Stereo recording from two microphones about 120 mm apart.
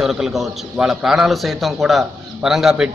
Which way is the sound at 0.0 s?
5° right (ahead or behind).